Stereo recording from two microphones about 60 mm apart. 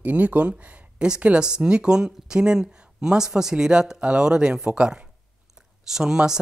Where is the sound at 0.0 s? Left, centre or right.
Right.